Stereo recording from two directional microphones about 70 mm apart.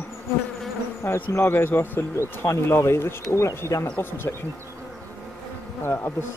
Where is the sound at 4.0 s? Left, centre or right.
Left.